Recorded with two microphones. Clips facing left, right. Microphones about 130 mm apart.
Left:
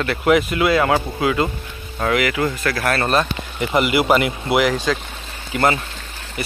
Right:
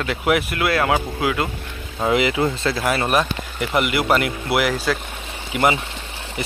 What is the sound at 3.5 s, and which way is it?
Speech, centre (ahead or behind).